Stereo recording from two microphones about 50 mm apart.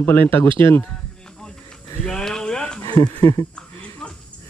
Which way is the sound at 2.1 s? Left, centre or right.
Centre.